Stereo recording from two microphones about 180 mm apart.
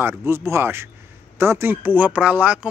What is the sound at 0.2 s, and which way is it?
Speech, 15° right (ahead or behind).